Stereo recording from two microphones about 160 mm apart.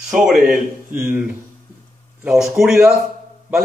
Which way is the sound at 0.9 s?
10° right (ahead or behind).